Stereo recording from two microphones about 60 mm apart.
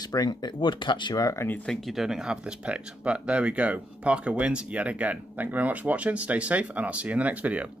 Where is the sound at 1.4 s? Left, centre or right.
Left.